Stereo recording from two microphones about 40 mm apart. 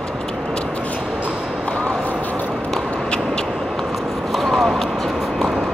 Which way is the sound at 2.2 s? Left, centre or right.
Left.